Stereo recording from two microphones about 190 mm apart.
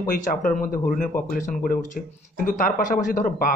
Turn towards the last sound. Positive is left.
turn(degrees=45)  # may be behind; listen again after turning